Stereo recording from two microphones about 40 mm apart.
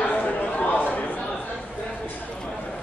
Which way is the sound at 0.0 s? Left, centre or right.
Left.